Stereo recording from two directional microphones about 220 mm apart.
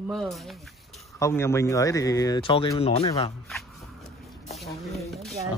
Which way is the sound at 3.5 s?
Centre (ahead or behind).